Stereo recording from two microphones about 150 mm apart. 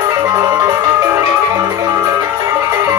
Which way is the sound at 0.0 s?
25° right (ahead or behind).